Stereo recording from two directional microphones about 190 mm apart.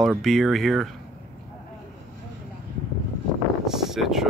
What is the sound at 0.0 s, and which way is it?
Speech, centre (ahead or behind).